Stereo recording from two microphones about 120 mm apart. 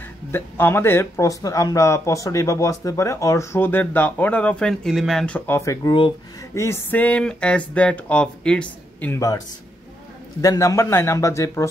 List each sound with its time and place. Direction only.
0.3 s speech: 20° left (ahead or behind)
5.6 s speech: 25° left (ahead or behind); by 9.1 s 10° left (ahead or behind)
9.1 s speech: 30° left (ahead or behind)
10.4 s speech: 30° left (ahead or behind)